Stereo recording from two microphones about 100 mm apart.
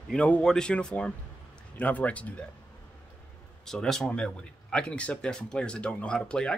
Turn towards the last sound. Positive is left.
turn(degrees=10)  # may be behind; listen again after turning